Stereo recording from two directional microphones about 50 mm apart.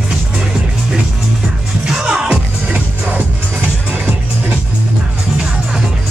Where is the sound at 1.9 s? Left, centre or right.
Centre.